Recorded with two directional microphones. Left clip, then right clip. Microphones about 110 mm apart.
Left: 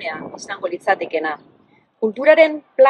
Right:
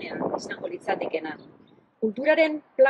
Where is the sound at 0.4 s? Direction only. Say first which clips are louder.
Left 8 dB; 30° left (ahead or behind).